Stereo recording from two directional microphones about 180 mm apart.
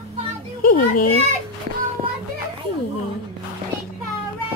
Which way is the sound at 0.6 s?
55° left (ahead or behind).